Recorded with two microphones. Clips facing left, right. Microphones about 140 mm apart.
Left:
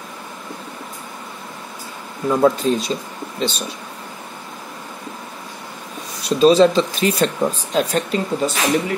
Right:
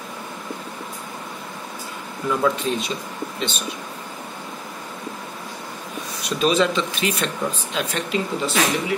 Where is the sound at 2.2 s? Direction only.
35° left (ahead or behind).